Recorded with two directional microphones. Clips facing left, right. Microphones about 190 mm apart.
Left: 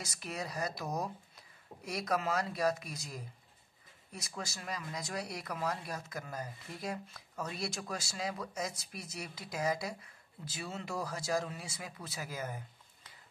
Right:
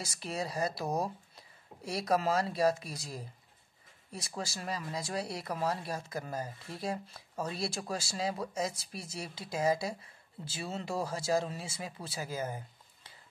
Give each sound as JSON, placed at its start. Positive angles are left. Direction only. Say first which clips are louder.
{"t": 0.0, "sound": "speech", "louder": "right 4 dB", "side_deg": -30}